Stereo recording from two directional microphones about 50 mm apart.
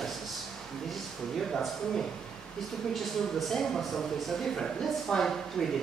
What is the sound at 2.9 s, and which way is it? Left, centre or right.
Speech, centre.